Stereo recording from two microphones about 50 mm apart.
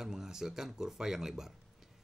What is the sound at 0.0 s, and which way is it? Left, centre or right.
Speech, centre.